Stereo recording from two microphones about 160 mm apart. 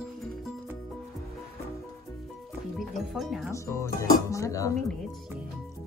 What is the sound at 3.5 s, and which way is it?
Speech, 20° left (ahead or behind).